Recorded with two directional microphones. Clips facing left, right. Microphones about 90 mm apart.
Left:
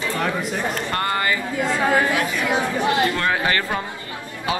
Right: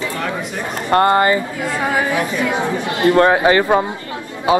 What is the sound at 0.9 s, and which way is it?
Speech, 35° right (ahead or behind).